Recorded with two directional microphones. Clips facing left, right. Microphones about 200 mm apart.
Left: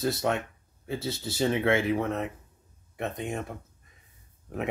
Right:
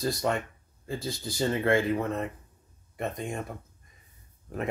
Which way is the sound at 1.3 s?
15° left (ahead or behind).